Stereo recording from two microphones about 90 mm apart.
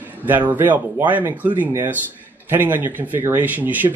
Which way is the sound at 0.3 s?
20° right (ahead or behind).